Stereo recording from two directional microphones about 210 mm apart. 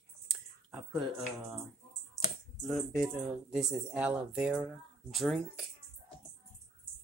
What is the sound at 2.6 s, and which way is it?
Speech, centre (ahead or behind).